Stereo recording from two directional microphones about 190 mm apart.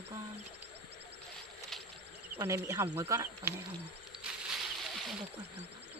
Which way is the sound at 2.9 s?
15° right (ahead or behind).